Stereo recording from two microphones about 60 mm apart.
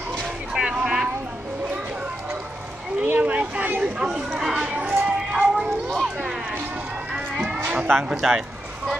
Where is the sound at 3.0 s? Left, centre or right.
Right.